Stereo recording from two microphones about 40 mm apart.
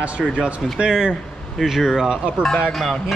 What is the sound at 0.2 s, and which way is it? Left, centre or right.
Speech, centre.